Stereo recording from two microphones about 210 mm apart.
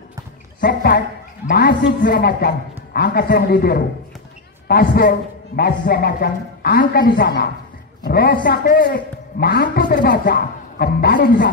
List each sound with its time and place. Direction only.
0.6 s a man's voice: 50° left (ahead or behind)
2.0 s speech: 40° left (ahead or behind)
2.2 s a man's voice: 50° left (ahead or behind)